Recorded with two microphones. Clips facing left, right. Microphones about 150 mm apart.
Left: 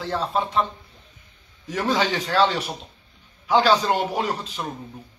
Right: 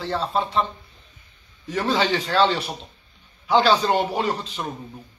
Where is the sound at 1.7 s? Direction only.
10° left (ahead or behind).